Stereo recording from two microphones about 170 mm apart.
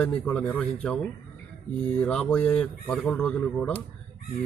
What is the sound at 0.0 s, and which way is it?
A man's voice, 5° left (ahead or behind).